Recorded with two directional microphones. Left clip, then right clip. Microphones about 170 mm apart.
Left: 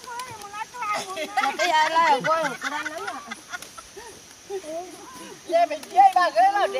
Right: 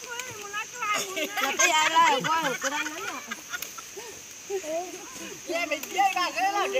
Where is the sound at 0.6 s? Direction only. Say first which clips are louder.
Left 1 dB; 60° left (ahead or behind).